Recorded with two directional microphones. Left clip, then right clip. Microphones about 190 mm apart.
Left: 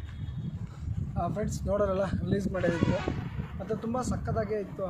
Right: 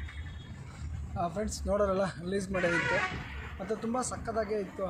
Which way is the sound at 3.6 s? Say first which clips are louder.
Left 1 dB; 25° left (ahead or behind).